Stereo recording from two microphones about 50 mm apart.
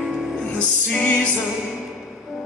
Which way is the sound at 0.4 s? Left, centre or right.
Left.